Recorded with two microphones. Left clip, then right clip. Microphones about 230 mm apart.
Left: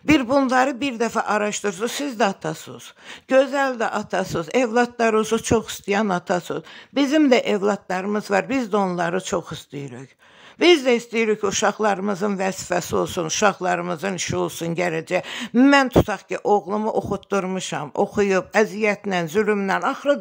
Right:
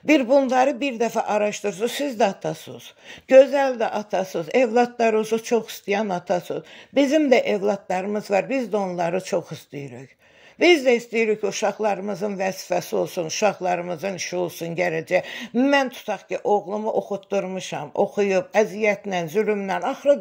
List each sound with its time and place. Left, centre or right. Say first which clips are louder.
0.0 s a man's voice: right 1 dB; centre